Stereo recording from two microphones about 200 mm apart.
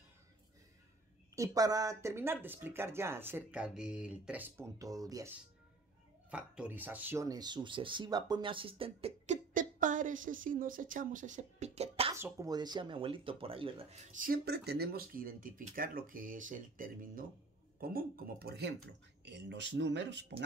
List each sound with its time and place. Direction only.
1.3 s speech: 15° right (ahead or behind)
6.3 s speech: 5° right (ahead or behind); by 12.1 s 30° right (ahead or behind)
12.1 s speech: 15° right (ahead or behind); by 20.4 s 60° right (ahead or behind)